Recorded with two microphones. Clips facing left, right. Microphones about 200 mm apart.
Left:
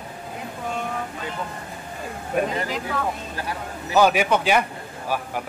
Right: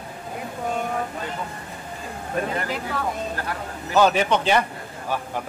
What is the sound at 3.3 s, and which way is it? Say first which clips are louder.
A man's voice: even; 10° left (ahead or behind).